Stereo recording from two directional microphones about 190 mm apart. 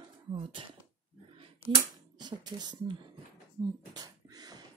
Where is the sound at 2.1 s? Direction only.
20° right (ahead or behind).